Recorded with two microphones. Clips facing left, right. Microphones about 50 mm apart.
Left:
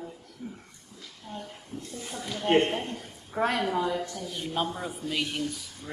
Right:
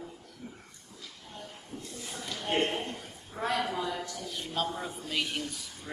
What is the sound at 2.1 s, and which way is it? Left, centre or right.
Speech, centre.